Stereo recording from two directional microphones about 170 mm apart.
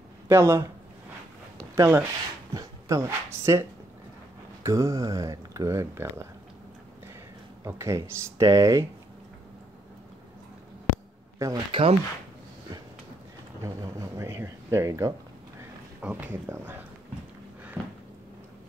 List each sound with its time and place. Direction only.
0.3 s speech: 15° right (ahead or behind)
1.8 s speech: 10° right (ahead or behind)
4.6 s speech: 20° right (ahead or behind)
7.6 s speech: 15° right (ahead or behind)
11.3 s speech: 20° right (ahead or behind)
11.7 s speech: 35° right (ahead or behind)
13.6 s speech: 20° right (ahead or behind)
16.0 s speech: 10° right (ahead or behind)